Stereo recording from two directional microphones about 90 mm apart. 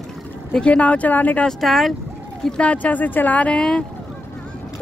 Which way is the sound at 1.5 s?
Centre (ahead or behind).